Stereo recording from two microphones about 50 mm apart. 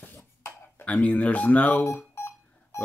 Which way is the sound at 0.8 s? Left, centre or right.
Left.